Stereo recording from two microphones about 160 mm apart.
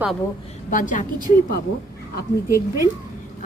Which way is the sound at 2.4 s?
20° right (ahead or behind).